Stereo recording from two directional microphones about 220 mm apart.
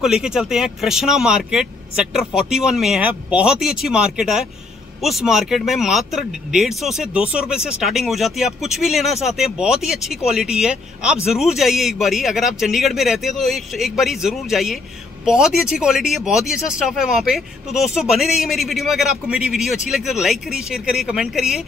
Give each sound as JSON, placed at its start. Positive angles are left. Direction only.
{"t": 0.0, "sound": "speech", "side_deg": 0}